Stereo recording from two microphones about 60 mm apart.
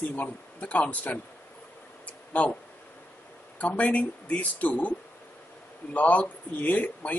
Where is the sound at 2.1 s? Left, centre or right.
Left.